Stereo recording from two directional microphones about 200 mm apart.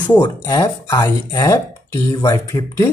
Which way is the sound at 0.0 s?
20° left (ahead or behind).